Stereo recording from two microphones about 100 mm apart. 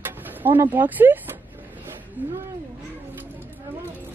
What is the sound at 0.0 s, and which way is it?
Speech, 20° right (ahead or behind).